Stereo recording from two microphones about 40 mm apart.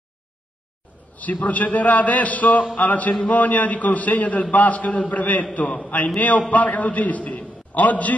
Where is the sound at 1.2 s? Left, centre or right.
Left.